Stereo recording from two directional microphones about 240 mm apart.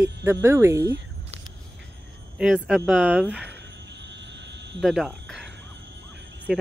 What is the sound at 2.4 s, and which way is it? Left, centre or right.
Speech, centre.